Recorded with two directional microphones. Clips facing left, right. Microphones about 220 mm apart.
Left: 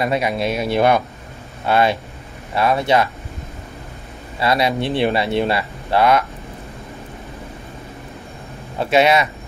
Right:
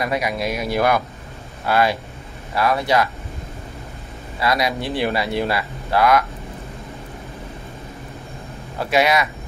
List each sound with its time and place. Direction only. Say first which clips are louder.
0.0 s speech: left 3 dB; 25° left (ahead or behind)
4.4 s speech: left 3 dB; 25° left (ahead or behind)
8.7 s speech: left 3 dB; 25° left (ahead or behind)